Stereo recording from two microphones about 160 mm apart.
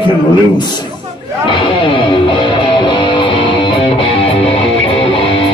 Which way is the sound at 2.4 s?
30° left (ahead or behind).